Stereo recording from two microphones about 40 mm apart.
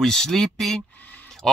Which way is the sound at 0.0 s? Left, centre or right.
Centre.